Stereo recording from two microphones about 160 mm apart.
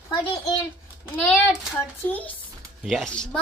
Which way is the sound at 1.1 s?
Centre (ahead or behind).